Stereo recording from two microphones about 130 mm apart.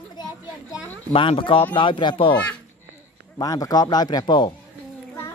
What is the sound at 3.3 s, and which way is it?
Speech, 30° left (ahead or behind).